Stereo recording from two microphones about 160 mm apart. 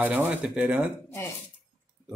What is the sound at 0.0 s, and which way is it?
Speech, 10° right (ahead or behind).